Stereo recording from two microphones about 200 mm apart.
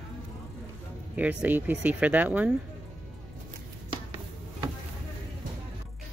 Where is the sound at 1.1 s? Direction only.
10° right (ahead or behind).